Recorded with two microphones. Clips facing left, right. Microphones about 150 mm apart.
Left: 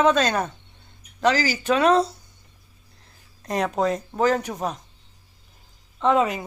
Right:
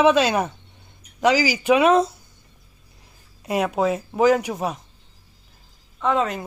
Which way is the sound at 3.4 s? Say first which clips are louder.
Right 2 dB; 5° right (ahead or behind).